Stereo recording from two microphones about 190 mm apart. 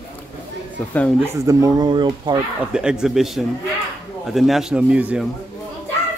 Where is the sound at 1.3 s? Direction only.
15° right (ahead or behind).